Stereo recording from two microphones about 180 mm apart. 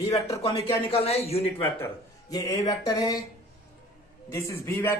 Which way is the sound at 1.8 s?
20° left (ahead or behind).